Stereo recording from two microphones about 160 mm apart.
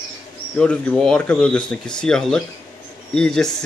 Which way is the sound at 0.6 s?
5° left (ahead or behind).